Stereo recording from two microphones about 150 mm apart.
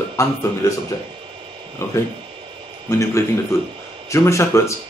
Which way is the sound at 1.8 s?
20° left (ahead or behind).